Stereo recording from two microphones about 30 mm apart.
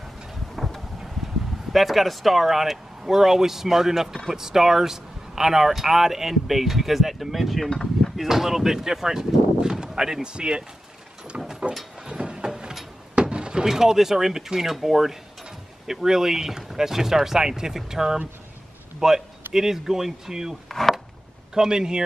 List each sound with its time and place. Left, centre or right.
0.6 s wind: centre
1.7 s speech: centre
10.2 s speech: right
11.3 s a sound: right
12.1 s a sound: right
13.7 s speech: centre
20.6 s speech: centre
21.5 s speech: right